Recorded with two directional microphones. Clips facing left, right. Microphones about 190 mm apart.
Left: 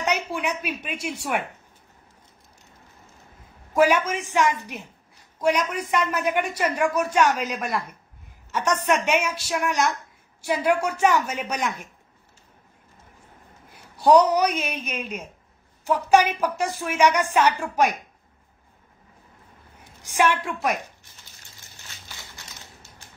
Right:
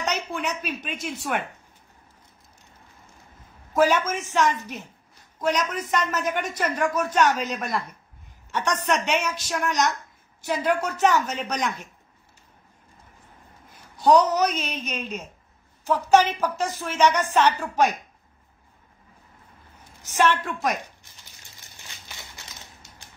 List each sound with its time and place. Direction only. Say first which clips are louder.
0.0 s a woman's voice: left 2 dB; 10° left (ahead or behind)
3.7 s a man's voice: left 1 dB; 15° left (ahead or behind)
13.9 s a man's voice: left 2 dB; 10° left (ahead or behind)
20.0 s a man's voice: even; 10° left (ahead or behind)
22.0 s crushing: even; 20° right (ahead or behind)